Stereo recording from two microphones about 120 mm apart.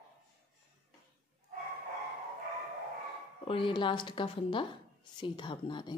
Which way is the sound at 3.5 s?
45° left (ahead or behind).